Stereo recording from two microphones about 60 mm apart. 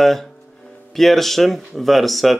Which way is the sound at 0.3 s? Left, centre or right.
Centre.